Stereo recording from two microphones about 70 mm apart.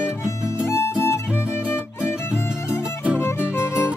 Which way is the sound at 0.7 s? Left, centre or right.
Left.